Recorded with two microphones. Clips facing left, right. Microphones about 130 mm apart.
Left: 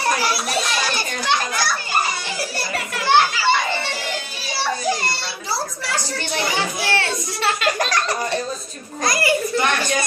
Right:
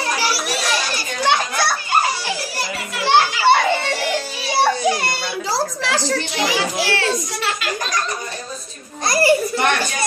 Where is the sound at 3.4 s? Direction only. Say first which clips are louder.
Right 5 dB; 60° right (ahead or behind).